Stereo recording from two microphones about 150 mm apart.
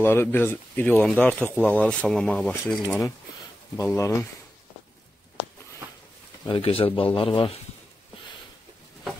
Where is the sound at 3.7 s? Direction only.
20° left (ahead or behind).